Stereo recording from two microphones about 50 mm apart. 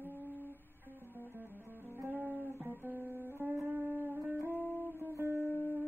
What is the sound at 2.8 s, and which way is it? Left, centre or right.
Music, right.